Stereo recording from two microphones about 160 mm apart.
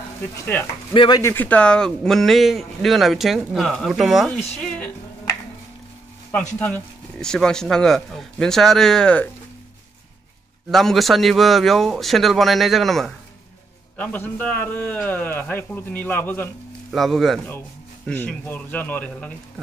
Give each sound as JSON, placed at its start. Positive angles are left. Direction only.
{"t": 0.9, "sound": "speech", "side_deg": 30}
{"t": 1.2, "sound": "speech", "side_deg": 10}
{"t": 4.6, "sound": "music", "side_deg": 5}
{"t": 6.6, "sound": "speech", "side_deg": 5}
{"t": 10.7, "sound": "a man's voice", "side_deg": 0}
{"t": 16.9, "sound": "a man's voice", "side_deg": 0}